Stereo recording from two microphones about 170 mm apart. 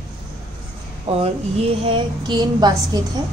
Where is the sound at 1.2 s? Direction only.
35° right (ahead or behind).